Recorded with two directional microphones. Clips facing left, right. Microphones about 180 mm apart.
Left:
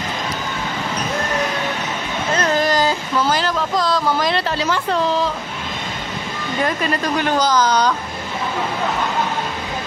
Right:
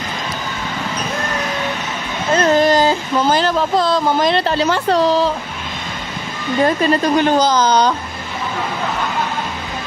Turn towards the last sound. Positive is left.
turn(degrees=-25)  # may be behind; listen again after turning